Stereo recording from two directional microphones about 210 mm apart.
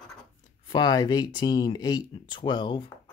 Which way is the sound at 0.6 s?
20° left (ahead or behind).